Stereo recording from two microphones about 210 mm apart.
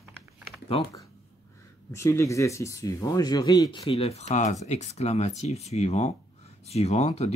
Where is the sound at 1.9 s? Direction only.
15° left (ahead or behind).